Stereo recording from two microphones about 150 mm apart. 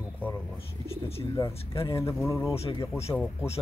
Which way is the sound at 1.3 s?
20° left (ahead or behind).